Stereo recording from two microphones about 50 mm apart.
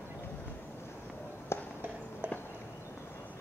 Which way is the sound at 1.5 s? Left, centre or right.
Left.